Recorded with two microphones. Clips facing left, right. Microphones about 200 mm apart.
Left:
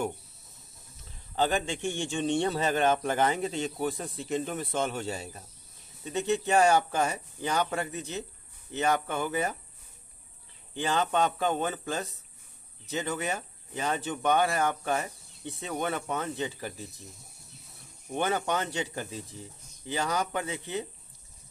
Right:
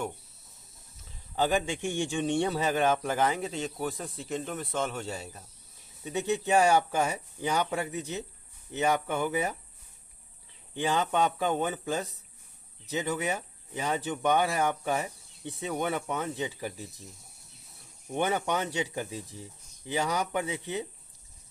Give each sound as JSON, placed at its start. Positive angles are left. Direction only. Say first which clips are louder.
{"t": 1.3, "sound": "speech", "louder": "right 1 dB", "side_deg": -10}
{"t": 6.0, "sound": "speech", "louder": "left 1 dB", "side_deg": -10}
{"t": 10.7, "sound": "speech", "louder": "even", "side_deg": -15}
{"t": 18.1, "sound": "speech", "louder": "even", "side_deg": -15}